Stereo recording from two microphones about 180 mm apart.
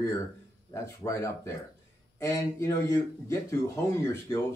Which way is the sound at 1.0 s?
15° left (ahead or behind).